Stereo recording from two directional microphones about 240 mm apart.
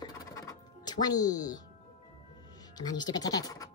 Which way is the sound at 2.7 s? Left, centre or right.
Centre.